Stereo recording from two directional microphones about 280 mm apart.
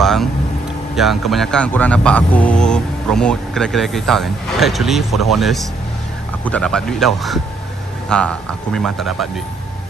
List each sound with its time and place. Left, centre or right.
0.0 s vehicle: centre
0.9 s speech: centre